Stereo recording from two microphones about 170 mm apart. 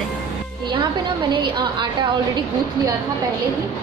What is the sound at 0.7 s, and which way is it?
A woman's voice, 25° right (ahead or behind).